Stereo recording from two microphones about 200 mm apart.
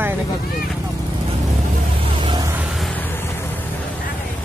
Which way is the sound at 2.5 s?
Centre (ahead or behind).